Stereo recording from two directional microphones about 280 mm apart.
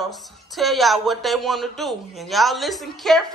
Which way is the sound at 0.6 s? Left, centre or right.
Centre.